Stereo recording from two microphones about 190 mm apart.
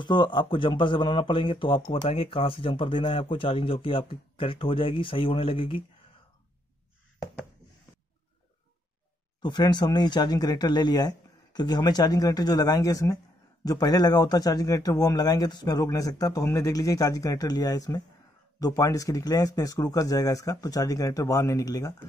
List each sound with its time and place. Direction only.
0.0 s speech: 25° left (ahead or behind)
9.4 s speech: 25° left (ahead or behind)